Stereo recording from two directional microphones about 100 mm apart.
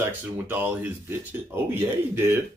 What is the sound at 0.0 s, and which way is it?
Speech, 20° right (ahead or behind).